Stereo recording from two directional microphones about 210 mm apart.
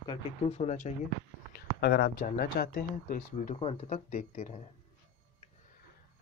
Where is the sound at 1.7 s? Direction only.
50° left (ahead or behind); by 4.6 s 35° left (ahead or behind).